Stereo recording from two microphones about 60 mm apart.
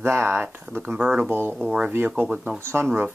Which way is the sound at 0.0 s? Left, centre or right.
Right.